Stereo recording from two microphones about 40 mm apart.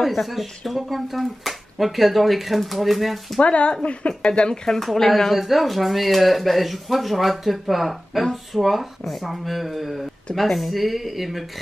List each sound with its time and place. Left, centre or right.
0.0 s speech: centre
3.3 s speech: left
4.7 s speech: centre